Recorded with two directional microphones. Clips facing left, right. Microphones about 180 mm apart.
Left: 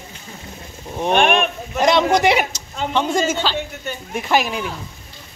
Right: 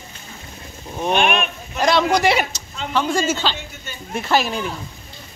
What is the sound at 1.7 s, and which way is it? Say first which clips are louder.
A man's voice: left 2 dB; 20° left (ahead or behind).